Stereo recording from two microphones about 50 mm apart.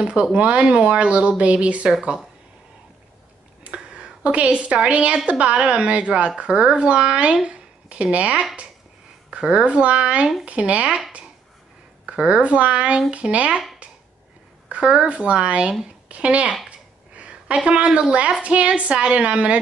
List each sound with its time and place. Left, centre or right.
0.0 s a woman's voice: right
1.9 s speech: centre
3.6 s a sound: centre
4.7 s a woman's voice: right
12.1 s a woman's voice: right
14.8 s a woman's voice: centre
16.6 s a sound: right
17.6 s a woman's voice: right